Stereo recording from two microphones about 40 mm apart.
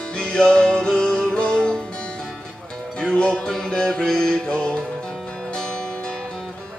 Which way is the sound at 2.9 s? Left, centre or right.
Left.